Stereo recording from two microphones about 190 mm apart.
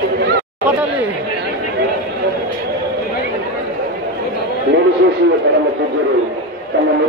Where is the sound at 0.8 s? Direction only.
5° right (ahead or behind).